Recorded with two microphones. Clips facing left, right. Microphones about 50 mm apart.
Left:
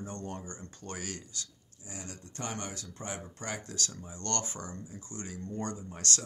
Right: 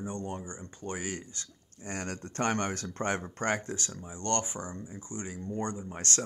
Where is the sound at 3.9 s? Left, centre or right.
Centre.